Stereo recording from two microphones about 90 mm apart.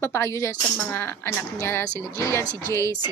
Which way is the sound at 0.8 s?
20° left (ahead or behind).